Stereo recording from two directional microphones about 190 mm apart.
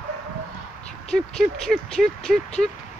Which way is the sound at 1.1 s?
5° left (ahead or behind).